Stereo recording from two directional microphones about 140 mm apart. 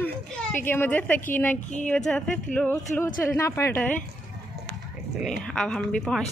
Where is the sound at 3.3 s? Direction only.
20° left (ahead or behind).